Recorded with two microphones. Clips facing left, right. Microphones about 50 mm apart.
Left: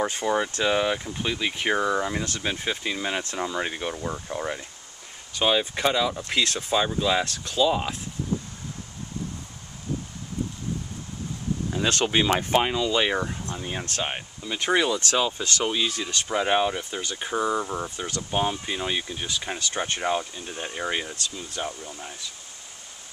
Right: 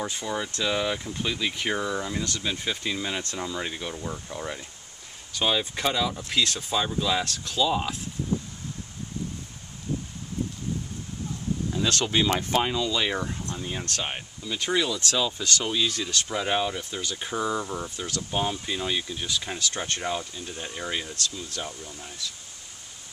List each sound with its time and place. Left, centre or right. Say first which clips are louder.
0.0 s speech: left 6 dB; left; by 8.0 s centre
11.7 s speech: left 2 dB; left